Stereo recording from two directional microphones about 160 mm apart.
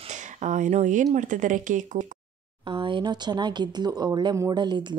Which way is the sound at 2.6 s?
30° right (ahead or behind).